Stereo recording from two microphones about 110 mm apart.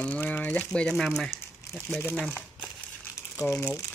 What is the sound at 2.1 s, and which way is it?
Crumpling, 10° left (ahead or behind).